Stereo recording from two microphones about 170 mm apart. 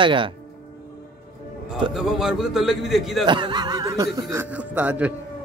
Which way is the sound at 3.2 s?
30° right (ahead or behind).